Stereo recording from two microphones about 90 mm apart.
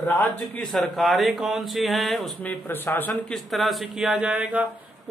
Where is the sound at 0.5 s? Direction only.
5° left (ahead or behind).